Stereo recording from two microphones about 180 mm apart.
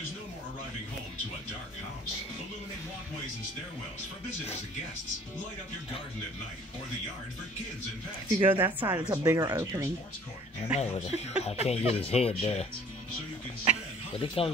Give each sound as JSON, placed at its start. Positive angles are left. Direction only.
{"t": 8.4, "sound": "speech", "side_deg": -10}
{"t": 10.7, "sound": "speech", "side_deg": 35}
{"t": 14.1, "sound": "speech", "side_deg": 30}